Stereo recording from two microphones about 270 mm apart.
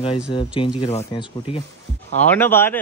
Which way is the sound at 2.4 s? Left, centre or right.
Centre.